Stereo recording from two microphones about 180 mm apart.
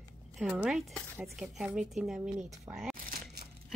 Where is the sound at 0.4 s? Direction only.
5° right (ahead or behind).